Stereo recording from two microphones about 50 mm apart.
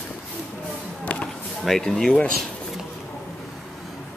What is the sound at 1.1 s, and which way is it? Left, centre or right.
Chop, left.